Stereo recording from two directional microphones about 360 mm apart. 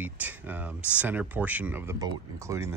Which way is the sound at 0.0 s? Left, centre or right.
Centre.